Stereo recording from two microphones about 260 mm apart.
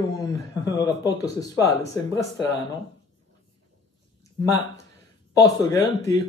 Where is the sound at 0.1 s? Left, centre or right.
Centre.